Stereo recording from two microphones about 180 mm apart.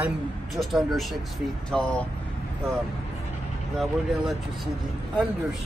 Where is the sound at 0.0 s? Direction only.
Centre (ahead or behind).